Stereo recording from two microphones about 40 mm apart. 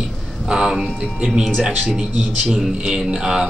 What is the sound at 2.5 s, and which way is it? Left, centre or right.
Speech, centre.